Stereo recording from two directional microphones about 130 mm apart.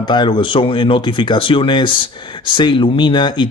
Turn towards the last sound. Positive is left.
turn(degrees=35)  # may be behind; listen again after turning